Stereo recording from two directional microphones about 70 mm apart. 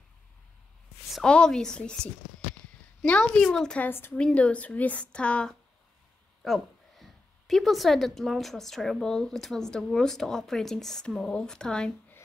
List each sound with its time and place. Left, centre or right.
1.2 s a woman's voice: centre
3.1 s a woman's voice: centre
3.8 s a woman's voice: left
4.2 s a woman's voice: centre
6.4 s a woman's voice: centre